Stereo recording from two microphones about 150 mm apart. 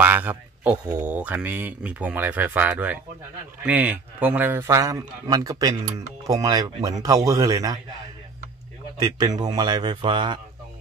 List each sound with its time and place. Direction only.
0.0 s a man's voice: 10° right (ahead or behind)
9.0 s a man's voice: 25° right (ahead or behind)